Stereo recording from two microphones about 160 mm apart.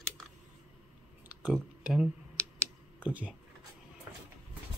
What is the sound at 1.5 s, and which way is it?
Speech, 5° right (ahead or behind).